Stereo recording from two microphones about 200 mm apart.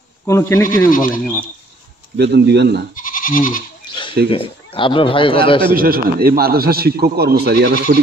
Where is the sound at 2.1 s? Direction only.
55° right (ahead or behind).